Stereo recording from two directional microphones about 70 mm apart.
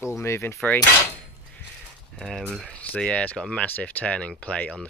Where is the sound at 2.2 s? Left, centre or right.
Centre.